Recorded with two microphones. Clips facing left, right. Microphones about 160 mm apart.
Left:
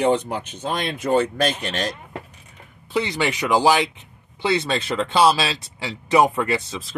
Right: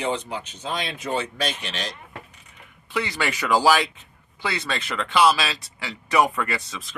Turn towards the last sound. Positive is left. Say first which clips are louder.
# left 6 dB
turn(degrees=30)  # may be behind; listen again after turning